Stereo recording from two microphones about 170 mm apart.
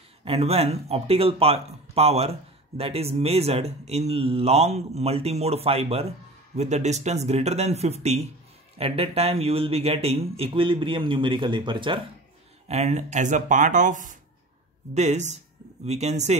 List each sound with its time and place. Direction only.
0.2 s speech: 35° right (ahead or behind)
12.6 s speech: 40° right (ahead or behind)